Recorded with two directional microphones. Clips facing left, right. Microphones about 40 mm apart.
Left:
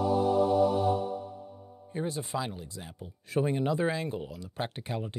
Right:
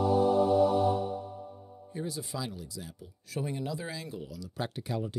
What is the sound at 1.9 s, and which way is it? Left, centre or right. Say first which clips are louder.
Speech: left 4 dB; left.